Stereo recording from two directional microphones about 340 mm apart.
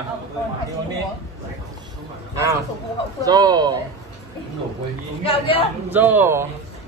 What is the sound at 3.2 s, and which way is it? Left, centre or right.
Speech, centre.